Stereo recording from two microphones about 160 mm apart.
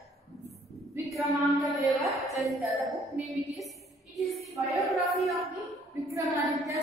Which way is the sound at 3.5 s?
Centre (ahead or behind).